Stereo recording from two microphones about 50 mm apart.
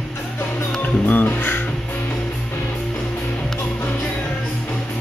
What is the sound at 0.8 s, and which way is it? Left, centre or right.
Speech, left.